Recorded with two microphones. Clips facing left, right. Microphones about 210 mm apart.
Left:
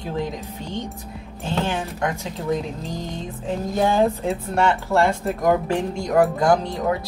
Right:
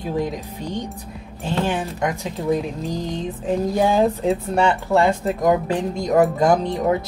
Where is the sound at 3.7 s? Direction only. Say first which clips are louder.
Even; 15° right (ahead or behind).